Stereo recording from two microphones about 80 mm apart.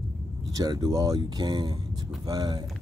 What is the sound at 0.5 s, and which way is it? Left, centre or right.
Speech, right.